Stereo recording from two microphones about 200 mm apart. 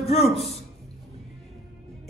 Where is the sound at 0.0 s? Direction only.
30° left (ahead or behind).